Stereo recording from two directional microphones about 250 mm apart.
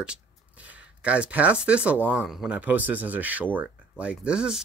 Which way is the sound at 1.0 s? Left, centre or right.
Centre.